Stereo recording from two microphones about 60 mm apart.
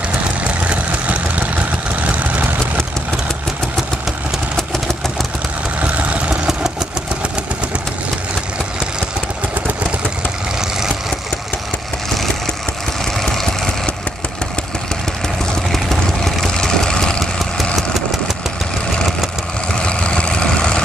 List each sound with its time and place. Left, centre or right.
0.4 s vehicle: right
5.8 s vehicle: right
13.0 s vehicle: centre
15.7 s vehicle: centre
19.8 s vehicle: centre